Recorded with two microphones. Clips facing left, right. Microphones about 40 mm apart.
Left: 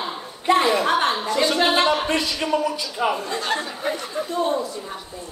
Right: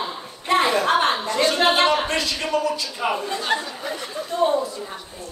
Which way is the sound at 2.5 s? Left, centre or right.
Left.